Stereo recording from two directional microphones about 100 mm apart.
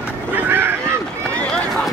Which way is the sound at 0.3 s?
20° right (ahead or behind).